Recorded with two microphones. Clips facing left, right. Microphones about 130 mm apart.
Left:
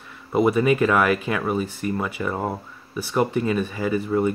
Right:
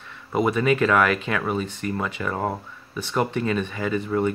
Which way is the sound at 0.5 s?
15° left (ahead or behind).